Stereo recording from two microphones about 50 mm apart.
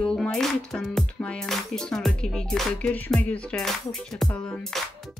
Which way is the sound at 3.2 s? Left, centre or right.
Left.